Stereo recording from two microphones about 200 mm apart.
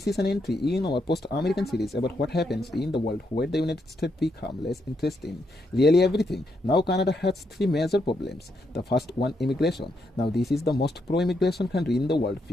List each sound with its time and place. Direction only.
0.0 s speech: 55° left (ahead or behind)
1.5 s speech: centre (ahead or behind)
2.0 s speech: 55° left (ahead or behind)
10.3 s speech: centre (ahead or behind)
10.6 s speech: 55° left (ahead or behind)